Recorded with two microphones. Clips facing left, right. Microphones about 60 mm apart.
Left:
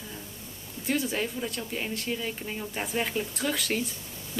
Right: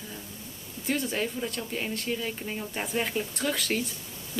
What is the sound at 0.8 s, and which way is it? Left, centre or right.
Speech, centre.